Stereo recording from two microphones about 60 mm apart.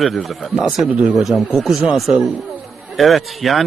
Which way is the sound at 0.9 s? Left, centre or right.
Right.